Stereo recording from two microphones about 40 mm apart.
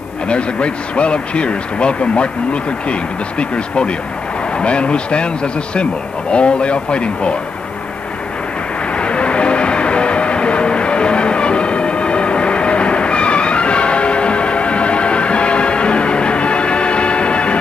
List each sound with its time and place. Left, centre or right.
0.3 s speech: left
8.9 s music: left